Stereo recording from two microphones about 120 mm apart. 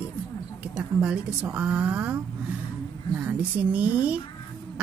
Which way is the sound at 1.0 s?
10° right (ahead or behind).